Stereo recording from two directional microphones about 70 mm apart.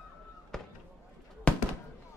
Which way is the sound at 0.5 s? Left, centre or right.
Centre.